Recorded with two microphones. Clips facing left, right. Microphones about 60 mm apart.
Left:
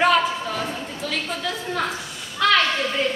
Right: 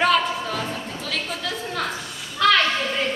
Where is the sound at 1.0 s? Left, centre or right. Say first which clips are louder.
Left 1 dB; centre.